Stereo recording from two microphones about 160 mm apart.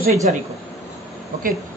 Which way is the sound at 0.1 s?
45° right (ahead or behind).